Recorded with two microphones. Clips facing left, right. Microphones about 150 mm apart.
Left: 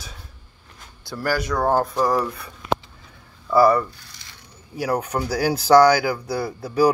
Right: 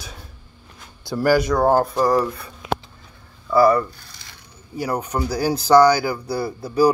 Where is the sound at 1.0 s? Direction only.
15° right (ahead or behind).